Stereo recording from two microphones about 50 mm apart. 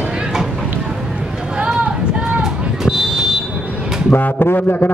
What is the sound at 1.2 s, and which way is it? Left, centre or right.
Run, centre.